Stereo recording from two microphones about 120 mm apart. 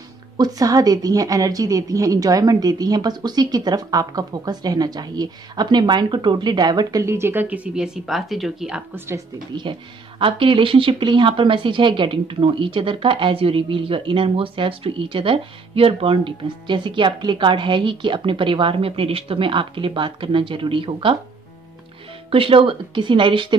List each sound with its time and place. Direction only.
0.4 s a woman's voice: 30° right (ahead or behind); by 8.8 s 5° right (ahead or behind)
8.9 s speech: 20° right (ahead or behind)
9.6 s speech: 45° right (ahead or behind)
22.3 s speech: 50° right (ahead or behind)